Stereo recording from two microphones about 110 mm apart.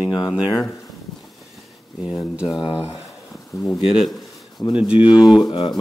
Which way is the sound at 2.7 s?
15° right (ahead or behind).